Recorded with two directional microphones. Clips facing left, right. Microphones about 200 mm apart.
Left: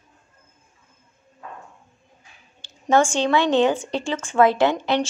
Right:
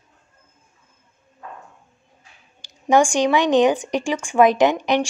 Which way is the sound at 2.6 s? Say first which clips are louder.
Right 2 dB; 15° right (ahead or behind).